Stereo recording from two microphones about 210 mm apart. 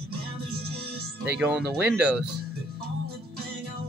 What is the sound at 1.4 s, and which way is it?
Speech, 5° right (ahead or behind).